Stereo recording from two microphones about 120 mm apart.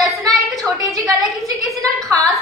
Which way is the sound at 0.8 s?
30° right (ahead or behind).